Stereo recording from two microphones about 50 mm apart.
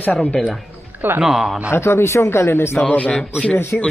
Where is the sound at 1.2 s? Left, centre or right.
Centre.